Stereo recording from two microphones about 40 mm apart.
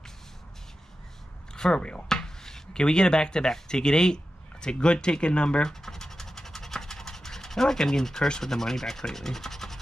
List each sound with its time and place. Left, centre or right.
1.5 s speech: left
2.0 s speech: centre
5.7 s scratch: centre
8.3 s rub: centre